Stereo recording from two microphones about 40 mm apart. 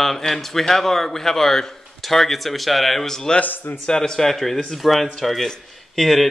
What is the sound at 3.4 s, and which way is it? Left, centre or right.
Speech, left.